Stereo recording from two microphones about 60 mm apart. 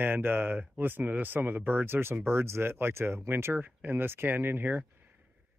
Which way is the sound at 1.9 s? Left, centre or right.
Right.